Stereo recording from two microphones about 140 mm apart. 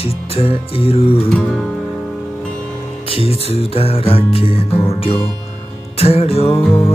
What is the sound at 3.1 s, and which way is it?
Music, 45° left (ahead or behind).